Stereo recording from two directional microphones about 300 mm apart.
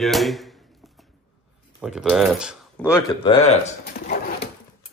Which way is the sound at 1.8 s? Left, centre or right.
Centre.